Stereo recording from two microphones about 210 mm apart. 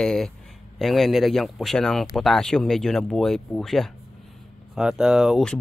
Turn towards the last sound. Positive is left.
turn(degrees=0)  # may be behind; listen again after turning